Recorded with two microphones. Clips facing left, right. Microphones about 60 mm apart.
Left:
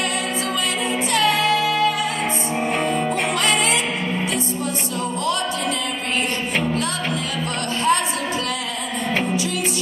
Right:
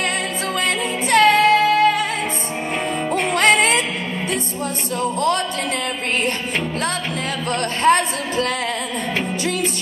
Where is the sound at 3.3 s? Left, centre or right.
Right.